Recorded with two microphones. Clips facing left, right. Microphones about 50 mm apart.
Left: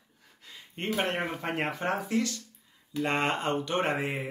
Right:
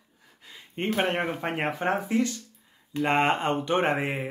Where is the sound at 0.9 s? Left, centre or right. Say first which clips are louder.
Right 3 dB; right.